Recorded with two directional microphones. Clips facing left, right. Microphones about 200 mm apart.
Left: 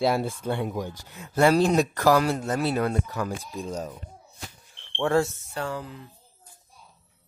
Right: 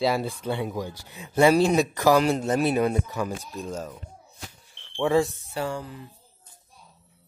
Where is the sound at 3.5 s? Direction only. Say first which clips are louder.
Even; 15° left (ahead or behind).